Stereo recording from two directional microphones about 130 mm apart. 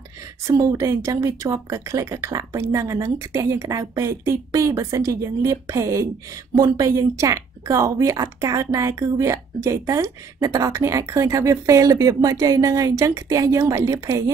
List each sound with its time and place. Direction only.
0.5 s speech: 25° right (ahead or behind)